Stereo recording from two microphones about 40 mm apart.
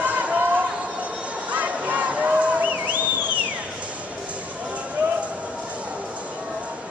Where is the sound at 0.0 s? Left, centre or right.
Right.